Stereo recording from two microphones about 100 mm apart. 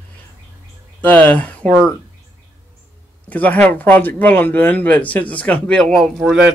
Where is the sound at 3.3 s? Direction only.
15° left (ahead or behind).